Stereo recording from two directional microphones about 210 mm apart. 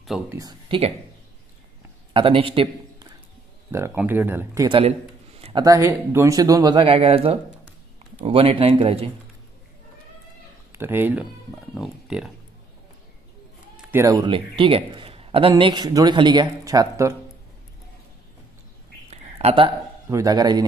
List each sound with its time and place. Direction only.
0.3 s a man's voice: 20° right (ahead or behind)
2.1 s a man's voice: 25° right (ahead or behind)
3.7 s speech: 10° right (ahead or behind)
4.6 s a man's voice: 25° right (ahead or behind)
10.7 s speech: 10° right (ahead or behind)
13.7 s a man's voice: 10° right (ahead or behind)
19.0 s a sound: 30° right (ahead or behind)
20.1 s speech: 15° right (ahead or behind)